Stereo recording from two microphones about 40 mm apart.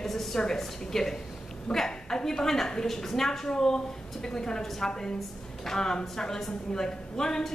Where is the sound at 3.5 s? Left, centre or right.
Centre.